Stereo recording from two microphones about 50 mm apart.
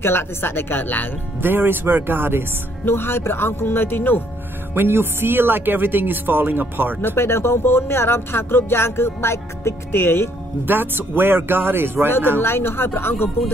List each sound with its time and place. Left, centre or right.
0.0 s speech: left
1.4 s speech: right
2.8 s speech: left
4.7 s speech: right
7.0 s speech: left
10.7 s speech: right
12.4 s speech: left